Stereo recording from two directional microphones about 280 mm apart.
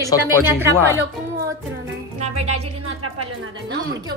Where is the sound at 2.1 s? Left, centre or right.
Right.